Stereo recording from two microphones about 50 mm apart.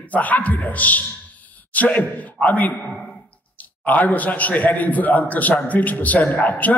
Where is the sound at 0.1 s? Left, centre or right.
Left.